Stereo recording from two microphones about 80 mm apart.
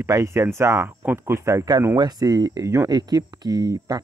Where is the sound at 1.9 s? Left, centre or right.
Right.